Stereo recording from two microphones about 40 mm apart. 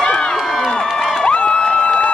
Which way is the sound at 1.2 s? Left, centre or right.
Left.